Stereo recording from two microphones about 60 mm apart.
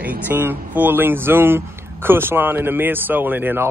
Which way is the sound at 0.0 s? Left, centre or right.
Right.